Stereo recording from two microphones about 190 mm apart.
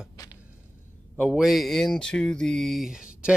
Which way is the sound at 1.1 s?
5° right (ahead or behind).